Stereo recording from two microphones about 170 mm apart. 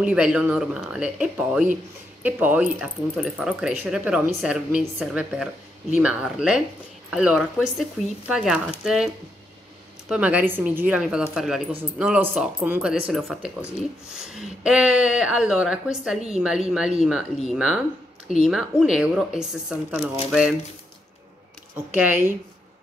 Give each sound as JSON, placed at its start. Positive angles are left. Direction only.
{"t": 0.0, "sound": "speech", "side_deg": -5}
{"t": 21.7, "sound": "speech", "side_deg": -10}